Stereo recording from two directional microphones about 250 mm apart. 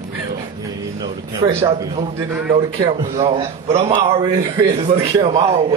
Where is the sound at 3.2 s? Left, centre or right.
Right.